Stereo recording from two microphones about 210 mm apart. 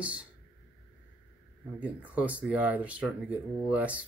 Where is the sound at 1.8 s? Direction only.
5° right (ahead or behind).